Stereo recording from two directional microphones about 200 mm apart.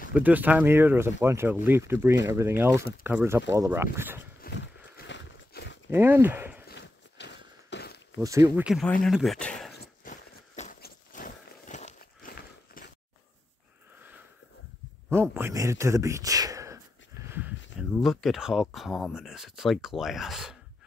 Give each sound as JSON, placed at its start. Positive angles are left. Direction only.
{"t": 0.1, "sound": "speech", "side_deg": -10}
{"t": 4.4, "sound": "horse", "side_deg": 55}
{"t": 5.9, "sound": "speech", "side_deg": -10}
{"t": 6.7, "sound": "walk", "side_deg": 55}
{"t": 8.2, "sound": "speech", "side_deg": -15}
{"t": 8.6, "sound": "speech", "side_deg": 5}
{"t": 10.0, "sound": "a sound", "side_deg": 40}
{"t": 15.0, "sound": "speech", "side_deg": -10}
{"t": 17.7, "sound": "speech", "side_deg": 0}